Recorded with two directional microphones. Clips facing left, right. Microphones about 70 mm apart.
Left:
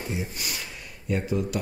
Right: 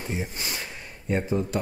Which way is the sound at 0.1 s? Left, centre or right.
Right.